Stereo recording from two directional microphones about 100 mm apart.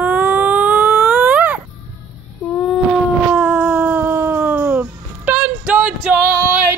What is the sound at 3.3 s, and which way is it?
Music, 10° right (ahead or behind).